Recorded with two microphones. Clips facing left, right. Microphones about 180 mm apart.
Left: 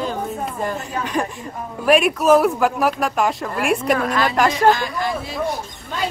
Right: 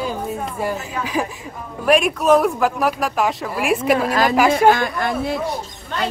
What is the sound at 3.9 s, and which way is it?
Speech, 35° right (ahead or behind).